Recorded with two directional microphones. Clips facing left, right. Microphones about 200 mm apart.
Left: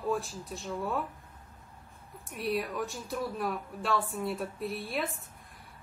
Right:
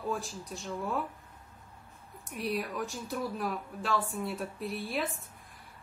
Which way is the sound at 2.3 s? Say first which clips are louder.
Left 2 dB; centre (ahead or behind).